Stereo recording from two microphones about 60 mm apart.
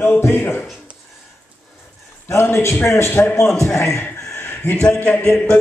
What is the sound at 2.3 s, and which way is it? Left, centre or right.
A man's voice, left.